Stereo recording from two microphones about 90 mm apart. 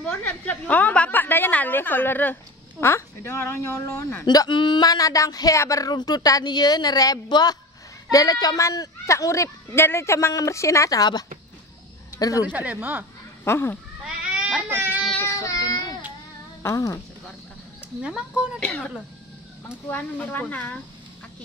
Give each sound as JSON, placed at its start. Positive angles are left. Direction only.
{"t": 0.0, "sound": "a woman's voice", "side_deg": 15}
{"t": 4.5, "sound": "a woman's voice", "side_deg": 60}
{"t": 13.4, "sound": "speech", "side_deg": 25}
{"t": 14.0, "sound": "cat", "side_deg": -15}
{"t": 15.4, "sound": "speech", "side_deg": 40}
{"t": 18.0, "sound": "speech", "side_deg": -10}
{"t": 18.6, "sound": "a woman's voice", "side_deg": 15}